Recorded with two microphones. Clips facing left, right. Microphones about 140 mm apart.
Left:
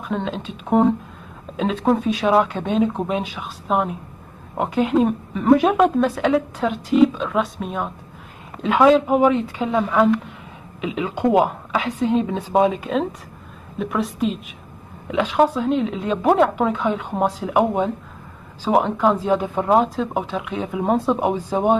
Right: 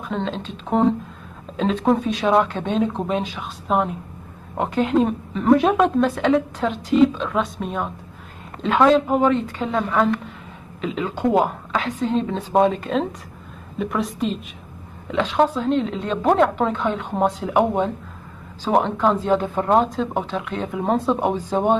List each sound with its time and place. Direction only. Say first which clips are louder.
0.1 s a woman's voice: left 1 dB; 5° left (ahead or behind)